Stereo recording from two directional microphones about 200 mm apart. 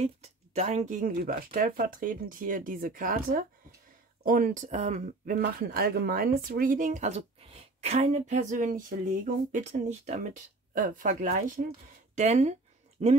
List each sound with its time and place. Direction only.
0.0 s speech: 35° right (ahead or behind)